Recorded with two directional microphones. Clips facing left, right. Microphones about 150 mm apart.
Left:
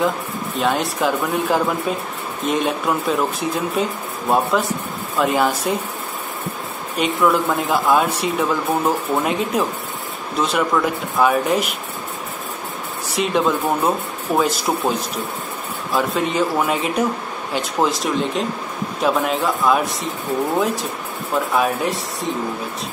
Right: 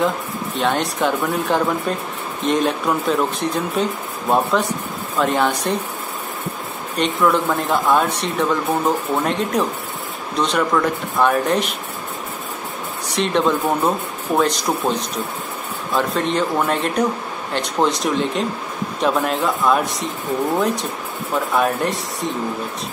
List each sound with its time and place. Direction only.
0.6 s speech: centre (ahead or behind)
7.0 s speech: 5° left (ahead or behind)
13.1 s speech: 5° left (ahead or behind)